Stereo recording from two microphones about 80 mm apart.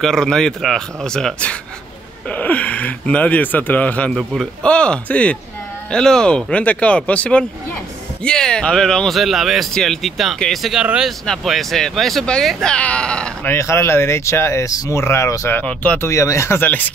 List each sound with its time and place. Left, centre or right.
0.0 s speech: centre
4.1 s speech: centre
4.6 s speech: centre
12.7 s speech: centre
13.5 s speech: left
15.6 s speech: centre
16.1 s speech: left